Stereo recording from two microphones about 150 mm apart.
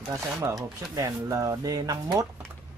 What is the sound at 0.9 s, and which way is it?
Speech, 20° right (ahead or behind).